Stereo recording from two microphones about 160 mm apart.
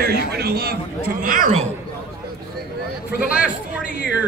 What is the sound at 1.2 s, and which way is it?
Speech, 60° right (ahead or behind).